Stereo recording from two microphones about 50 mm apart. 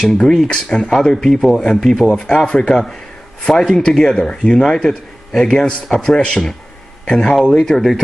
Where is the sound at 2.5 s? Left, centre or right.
Centre.